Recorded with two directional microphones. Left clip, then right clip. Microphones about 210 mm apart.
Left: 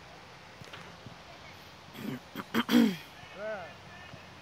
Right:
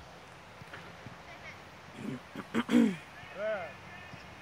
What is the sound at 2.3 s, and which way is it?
Throat clearing, 5° left (ahead or behind).